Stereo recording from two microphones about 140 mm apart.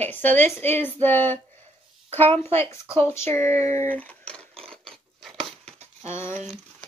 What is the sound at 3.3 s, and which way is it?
Speech, 50° right (ahead or behind).